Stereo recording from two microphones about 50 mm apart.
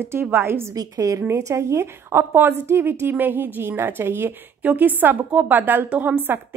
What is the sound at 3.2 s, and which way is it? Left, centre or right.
Speech, right.